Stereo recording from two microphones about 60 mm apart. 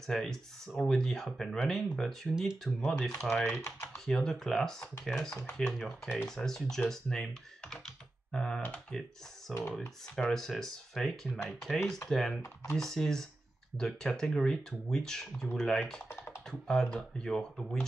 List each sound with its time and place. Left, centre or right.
0.0 s speech: centre
3.3 s speech: left
3.5 s speech: left
4.0 s speech: centre
7.6 s computer keyboard: centre
8.9 s speech: centre
16.1 s computer keyboard: left
16.4 s speech: centre